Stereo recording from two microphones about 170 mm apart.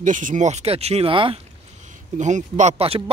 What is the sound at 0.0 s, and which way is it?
Speech, 50° right (ahead or behind).